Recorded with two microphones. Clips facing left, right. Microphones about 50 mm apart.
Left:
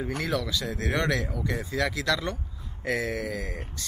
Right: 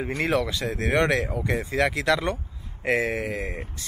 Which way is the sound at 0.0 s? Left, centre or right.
Right.